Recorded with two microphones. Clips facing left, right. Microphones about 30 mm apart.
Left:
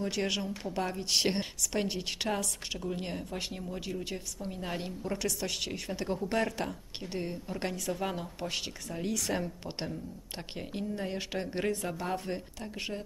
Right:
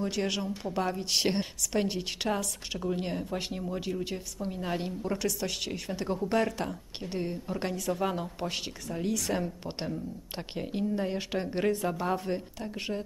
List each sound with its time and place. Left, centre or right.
0.0 s a woman's voice: centre